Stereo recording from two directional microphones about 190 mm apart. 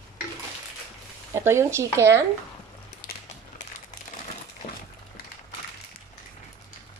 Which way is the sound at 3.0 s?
50° left (ahead or behind).